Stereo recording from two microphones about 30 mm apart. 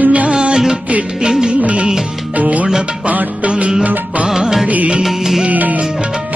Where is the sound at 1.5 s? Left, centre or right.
Right.